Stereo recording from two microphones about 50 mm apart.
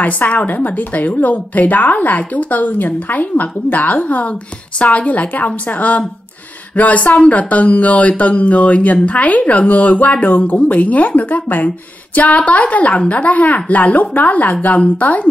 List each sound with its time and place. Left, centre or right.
0.0 s a woman's voice: left